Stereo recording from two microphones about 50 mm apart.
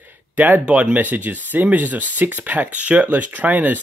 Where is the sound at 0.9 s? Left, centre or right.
Right.